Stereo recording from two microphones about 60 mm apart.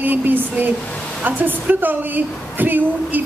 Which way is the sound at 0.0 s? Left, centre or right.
Right.